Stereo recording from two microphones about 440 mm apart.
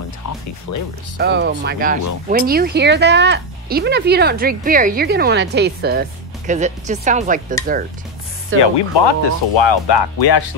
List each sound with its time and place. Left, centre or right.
0.7 s speech: left
1.1 s speech: right
8.5 s speech: left